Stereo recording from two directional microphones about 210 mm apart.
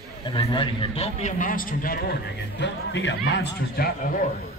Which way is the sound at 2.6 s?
55° left (ahead or behind).